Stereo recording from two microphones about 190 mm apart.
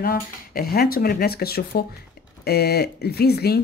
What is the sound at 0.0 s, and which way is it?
Speech, 50° left (ahead or behind).